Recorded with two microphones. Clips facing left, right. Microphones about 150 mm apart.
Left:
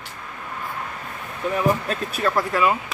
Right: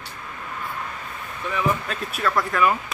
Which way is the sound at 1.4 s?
40° left (ahead or behind).